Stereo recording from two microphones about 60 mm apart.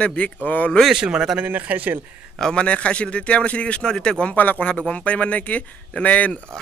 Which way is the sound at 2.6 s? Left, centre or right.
Centre.